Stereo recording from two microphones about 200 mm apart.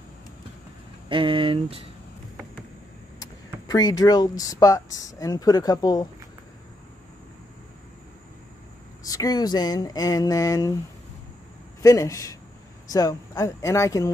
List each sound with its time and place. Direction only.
1.0 s speech: 25° right (ahead or behind)
3.2 s speech: 20° left (ahead or behind)
9.0 s speech: 20° left (ahead or behind)
11.8 s speech: 15° left (ahead or behind)